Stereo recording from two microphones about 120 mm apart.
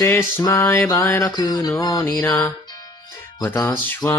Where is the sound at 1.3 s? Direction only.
30° left (ahead or behind).